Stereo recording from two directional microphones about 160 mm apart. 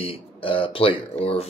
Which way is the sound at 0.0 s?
35° left (ahead or behind).